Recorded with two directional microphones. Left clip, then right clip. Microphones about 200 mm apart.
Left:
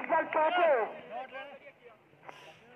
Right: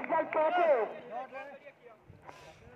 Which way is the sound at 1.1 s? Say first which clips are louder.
Even; 15° right (ahead or behind).